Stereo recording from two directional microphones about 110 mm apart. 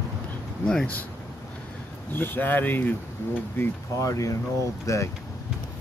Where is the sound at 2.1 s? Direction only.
20° left (ahead or behind).